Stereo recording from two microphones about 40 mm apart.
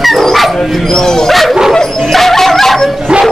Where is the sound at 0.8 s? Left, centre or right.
Centre.